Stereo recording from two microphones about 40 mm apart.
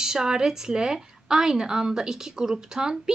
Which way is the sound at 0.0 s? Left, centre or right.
Centre.